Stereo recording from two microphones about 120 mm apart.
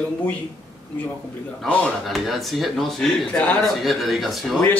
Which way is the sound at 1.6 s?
Centre (ahead or behind).